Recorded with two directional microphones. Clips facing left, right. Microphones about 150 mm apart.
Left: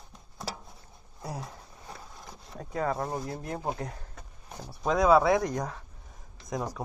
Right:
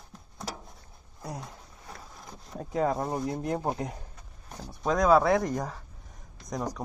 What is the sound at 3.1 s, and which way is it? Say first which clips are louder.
Speech: right 3 dB; centre (ahead or behind).